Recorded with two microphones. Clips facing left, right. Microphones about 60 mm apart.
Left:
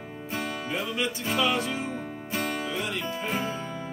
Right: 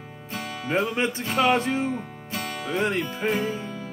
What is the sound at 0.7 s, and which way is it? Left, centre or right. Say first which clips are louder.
Speech: right 8 dB; right.